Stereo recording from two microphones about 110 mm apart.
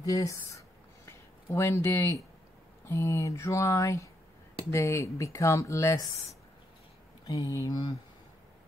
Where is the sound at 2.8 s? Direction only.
25° left (ahead or behind).